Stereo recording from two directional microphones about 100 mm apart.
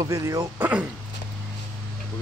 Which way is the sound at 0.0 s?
35° right (ahead or behind).